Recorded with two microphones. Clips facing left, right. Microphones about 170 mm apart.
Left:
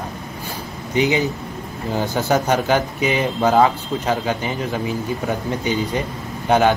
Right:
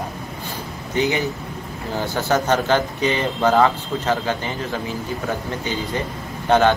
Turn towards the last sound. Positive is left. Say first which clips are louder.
# even
turn(degrees=10)  # may be behind; listen again after turning